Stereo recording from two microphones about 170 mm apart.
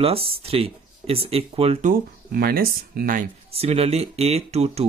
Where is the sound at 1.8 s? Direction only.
60° right (ahead or behind).